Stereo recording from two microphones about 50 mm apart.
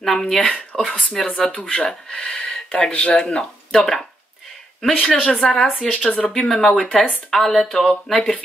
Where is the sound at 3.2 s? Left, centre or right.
Centre.